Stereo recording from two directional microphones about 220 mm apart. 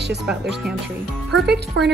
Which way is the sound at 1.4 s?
50° right (ahead or behind).